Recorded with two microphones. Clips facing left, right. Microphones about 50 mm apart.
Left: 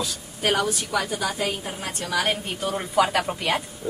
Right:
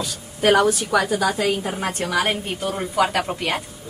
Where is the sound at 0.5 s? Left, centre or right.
Right.